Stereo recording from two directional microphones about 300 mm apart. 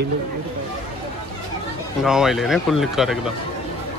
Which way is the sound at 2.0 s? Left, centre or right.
Centre.